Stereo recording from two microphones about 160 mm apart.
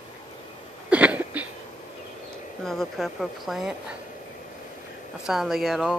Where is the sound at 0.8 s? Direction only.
10° right (ahead or behind).